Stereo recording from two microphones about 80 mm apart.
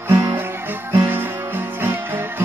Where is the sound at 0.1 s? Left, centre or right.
Right.